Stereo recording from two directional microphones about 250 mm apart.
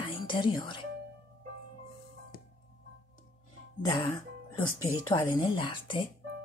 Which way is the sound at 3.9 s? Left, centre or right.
Centre.